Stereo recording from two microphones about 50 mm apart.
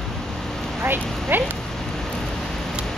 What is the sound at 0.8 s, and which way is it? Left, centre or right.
Speech, right.